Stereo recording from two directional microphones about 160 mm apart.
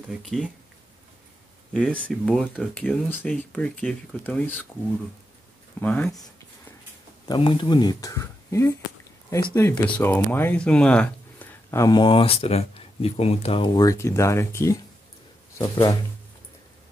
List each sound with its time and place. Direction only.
0.2 s speech: centre (ahead or behind)
1.7 s speech: 5° left (ahead or behind)
5.8 s speech: 10° left (ahead or behind)
7.2 s speech: 30° left (ahead or behind)
13.7 s speech: 20° left (ahead or behind)